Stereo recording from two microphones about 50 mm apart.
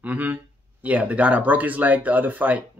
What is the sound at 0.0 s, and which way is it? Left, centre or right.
Speech, right.